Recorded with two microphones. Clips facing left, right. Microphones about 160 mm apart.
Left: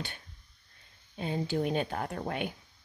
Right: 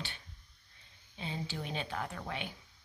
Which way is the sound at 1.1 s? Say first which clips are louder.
Left 9 dB; 50° left (ahead or behind).